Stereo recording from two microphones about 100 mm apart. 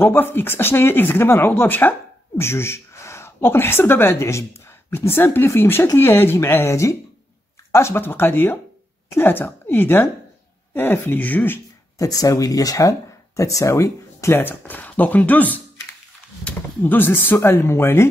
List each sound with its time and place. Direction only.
0.0 s speech: 20° left (ahead or behind)
12.0 s speech: 35° left (ahead or behind)